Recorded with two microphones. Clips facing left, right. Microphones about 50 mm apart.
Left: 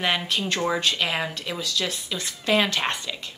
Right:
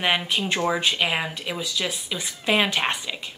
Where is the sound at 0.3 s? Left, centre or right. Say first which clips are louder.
Right 1 dB; centre.